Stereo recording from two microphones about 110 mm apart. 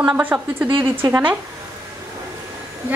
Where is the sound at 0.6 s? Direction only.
50° right (ahead or behind).